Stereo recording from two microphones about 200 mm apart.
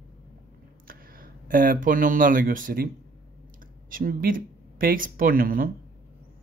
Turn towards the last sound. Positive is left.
turn(degrees=-45)  # may be behind; listen again after turning